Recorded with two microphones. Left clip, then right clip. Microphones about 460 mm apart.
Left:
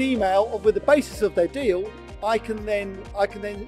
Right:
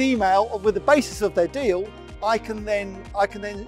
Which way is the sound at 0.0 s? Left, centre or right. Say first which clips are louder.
Right 1 dB; right.